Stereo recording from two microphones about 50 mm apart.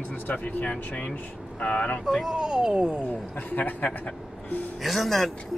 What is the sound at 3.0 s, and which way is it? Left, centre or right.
Speech, left.